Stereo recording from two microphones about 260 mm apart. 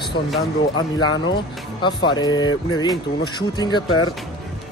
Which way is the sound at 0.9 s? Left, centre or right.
Centre.